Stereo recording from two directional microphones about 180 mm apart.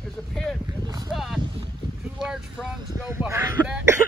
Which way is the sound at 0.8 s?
20° right (ahead or behind).